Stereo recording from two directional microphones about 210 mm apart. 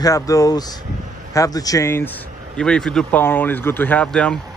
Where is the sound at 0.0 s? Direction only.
15° left (ahead or behind).